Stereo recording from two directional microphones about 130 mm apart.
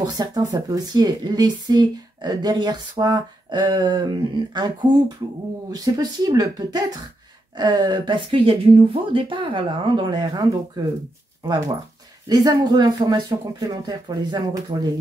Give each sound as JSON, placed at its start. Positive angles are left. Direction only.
{"t": 0.0, "sound": "speech", "side_deg": -30}
{"t": 12.3, "sound": "speech", "side_deg": -30}